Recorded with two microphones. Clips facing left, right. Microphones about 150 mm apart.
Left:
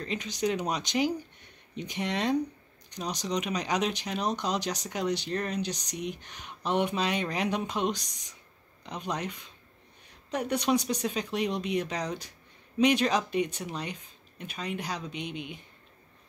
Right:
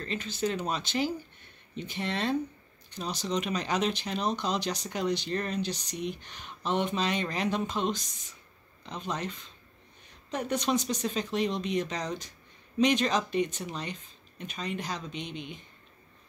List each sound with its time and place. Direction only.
0.0 s speech: 15° left (ahead or behind)